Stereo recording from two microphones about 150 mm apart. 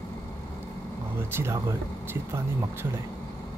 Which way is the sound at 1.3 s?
15° right (ahead or behind).